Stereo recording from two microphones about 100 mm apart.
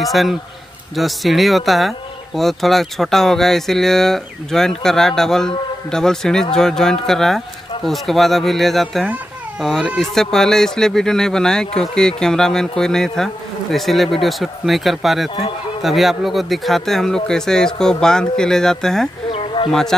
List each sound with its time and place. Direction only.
0.0 s speech: centre (ahead or behind)
19.3 s bird: 60° left (ahead or behind)
19.7 s speech: 5° left (ahead or behind)